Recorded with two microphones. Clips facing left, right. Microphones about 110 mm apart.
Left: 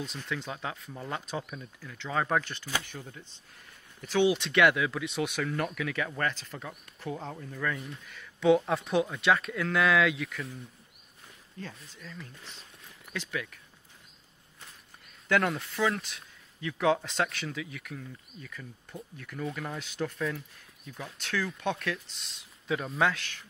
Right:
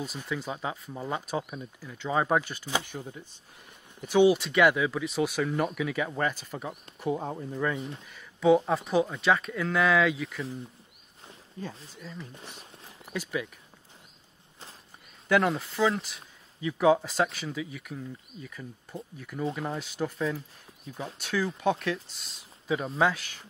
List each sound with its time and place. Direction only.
0.0 s speech: 5° right (ahead or behind)
6.7 s speech: 25° right (ahead or behind)
8.1 s speech: 5° right (ahead or behind)
11.6 s speech: 15° right (ahead or behind)
15.2 s speech: 5° right (ahead or behind)
19.4 s speech: 20° right (ahead or behind)
19.8 s speech: 5° right (ahead or behind)
20.3 s speech: 35° right (ahead or behind)
21.0 s speech: 15° right (ahead or behind)